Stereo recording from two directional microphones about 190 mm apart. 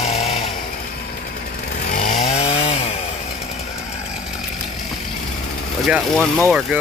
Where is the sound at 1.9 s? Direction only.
45° left (ahead or behind).